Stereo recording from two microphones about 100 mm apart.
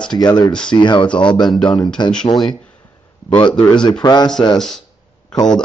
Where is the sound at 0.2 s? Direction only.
45° left (ahead or behind).